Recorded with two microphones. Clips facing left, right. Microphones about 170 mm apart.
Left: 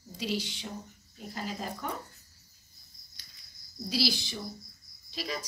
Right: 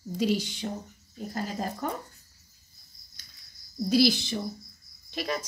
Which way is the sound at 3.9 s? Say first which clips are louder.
Right 8 dB; 50° right (ahead or behind).